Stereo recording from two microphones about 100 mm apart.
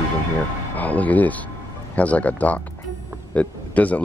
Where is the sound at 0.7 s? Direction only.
15° left (ahead or behind).